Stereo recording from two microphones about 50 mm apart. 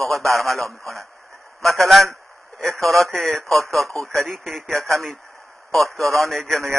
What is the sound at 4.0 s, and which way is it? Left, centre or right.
Speech, right.